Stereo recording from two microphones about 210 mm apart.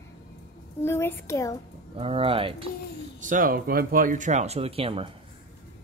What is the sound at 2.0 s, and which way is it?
Speech, 25° right (ahead or behind).